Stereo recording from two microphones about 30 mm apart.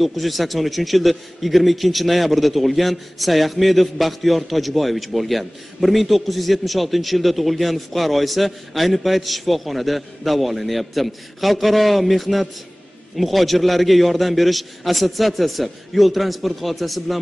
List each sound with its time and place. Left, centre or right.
0.0 s a man's voice: centre